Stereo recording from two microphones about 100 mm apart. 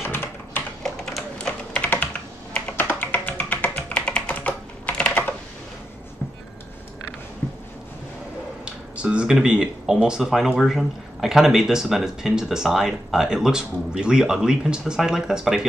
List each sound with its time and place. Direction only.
0.0 s typing: 20° left (ahead or behind)
0.8 s typing: 5° left (ahead or behind)
1.8 s typing: 15° left (ahead or behind)
2.7 s music: 20° left (ahead or behind)
8.6 s speech: 10° right (ahead or behind)